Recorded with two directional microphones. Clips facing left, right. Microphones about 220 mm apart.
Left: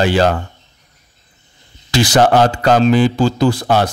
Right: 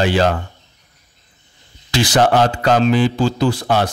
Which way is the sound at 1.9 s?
40° left (ahead or behind).